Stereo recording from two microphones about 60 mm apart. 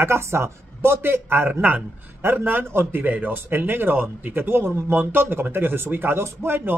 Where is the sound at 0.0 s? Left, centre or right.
Right.